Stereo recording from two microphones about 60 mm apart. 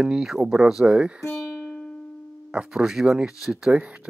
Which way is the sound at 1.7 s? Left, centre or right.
Left.